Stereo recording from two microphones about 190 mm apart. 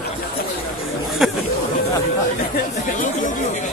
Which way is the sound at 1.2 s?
5° right (ahead or behind).